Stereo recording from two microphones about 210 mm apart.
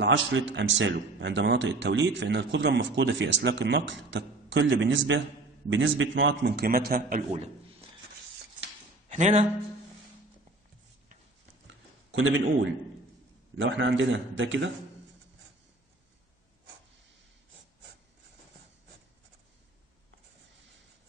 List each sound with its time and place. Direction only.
0.0 s a man's voice: 60° right (ahead or behind); by 7.2 s 45° right (ahead or behind)
9.1 s speech: 35° right (ahead or behind)
11.6 s a sound: 65° right (ahead or behind)
13.6 s a man's voice: 60° right (ahead or behind)